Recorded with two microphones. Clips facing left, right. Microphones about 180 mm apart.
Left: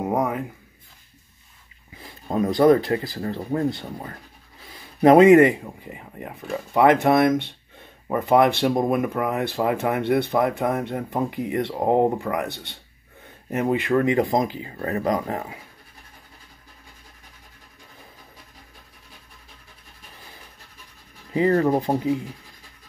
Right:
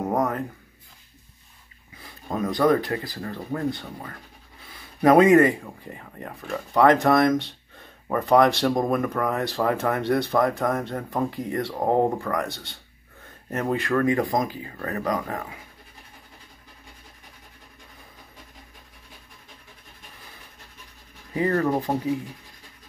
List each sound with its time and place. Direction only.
0.0 s a sound: 10° left (ahead or behind)
2.0 s speech: 30° left (ahead or behind)
21.3 s speech: 25° left (ahead or behind)